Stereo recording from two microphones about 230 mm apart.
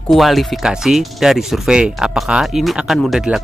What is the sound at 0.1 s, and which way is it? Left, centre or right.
Speech, centre.